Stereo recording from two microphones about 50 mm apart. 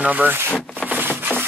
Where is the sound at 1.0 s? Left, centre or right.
Right.